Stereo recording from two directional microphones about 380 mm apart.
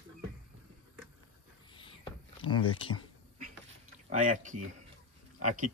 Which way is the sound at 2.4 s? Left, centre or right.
Left.